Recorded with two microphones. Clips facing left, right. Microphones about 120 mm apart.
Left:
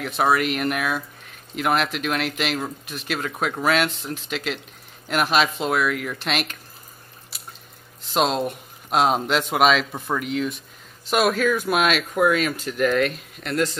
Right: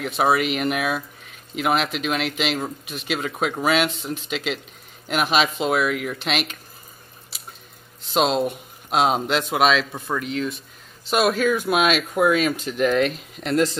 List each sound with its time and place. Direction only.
0.0 s speech: 5° right (ahead or behind)
8.1 s speech: centre (ahead or behind)
12.5 s speech: 20° right (ahead or behind)